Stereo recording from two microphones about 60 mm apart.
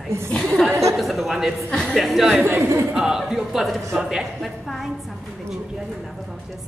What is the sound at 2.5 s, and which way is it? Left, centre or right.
Speech, right.